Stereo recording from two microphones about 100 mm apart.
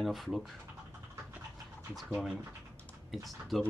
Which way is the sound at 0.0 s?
Centre (ahead or behind).